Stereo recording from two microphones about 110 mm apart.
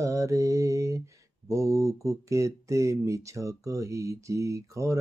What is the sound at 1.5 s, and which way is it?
Speech, 30° right (ahead or behind).